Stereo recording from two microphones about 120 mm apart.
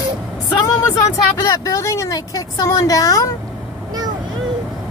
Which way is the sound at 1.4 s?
25° left (ahead or behind).